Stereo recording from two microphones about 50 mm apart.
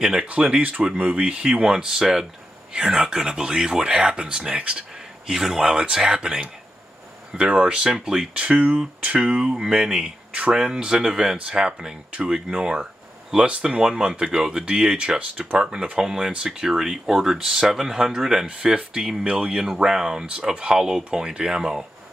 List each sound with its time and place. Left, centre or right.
0.0 s speech: centre
0.6 s speech: right
1.1 s speech: right
5.2 s speech: centre
8.4 s speech: right
15.6 s speech: centre